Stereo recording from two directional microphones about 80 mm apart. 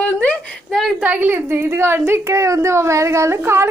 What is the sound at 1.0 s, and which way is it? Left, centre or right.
A woman's voice, right.